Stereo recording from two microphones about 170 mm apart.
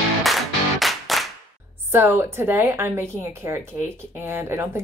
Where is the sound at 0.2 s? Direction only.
Centre (ahead or behind).